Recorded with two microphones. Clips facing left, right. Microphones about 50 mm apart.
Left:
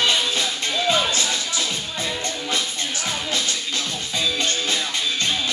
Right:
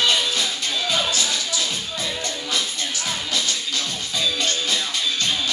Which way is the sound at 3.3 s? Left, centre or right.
Left.